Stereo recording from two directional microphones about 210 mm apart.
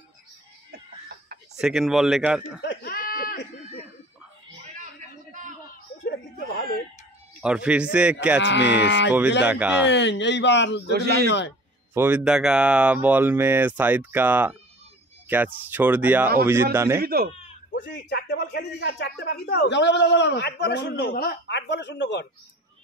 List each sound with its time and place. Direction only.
0.7 s chicken: 50° right (ahead or behind)
1.6 s a man's voice: centre (ahead or behind)
2.6 s a sound: 50° left (ahead or behind)
6.0 s a sound: 50° left (ahead or behind)
7.4 s a man's voice: 5° right (ahead or behind)
8.4 s speech: 55° left (ahead or behind)
9.4 s speech: 5° right (ahead or behind)
9.8 s speech: 55° left (ahead or behind)
10.9 s speech: 50° right (ahead or behind)
11.9 s speech: 10° right (ahead or behind)
17.0 s speech: 45° right (ahead or behind)
17.8 s speech: 55° left (ahead or behind)